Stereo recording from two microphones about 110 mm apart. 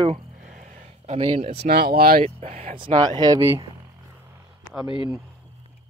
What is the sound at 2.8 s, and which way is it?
Speech, 45° right (ahead or behind).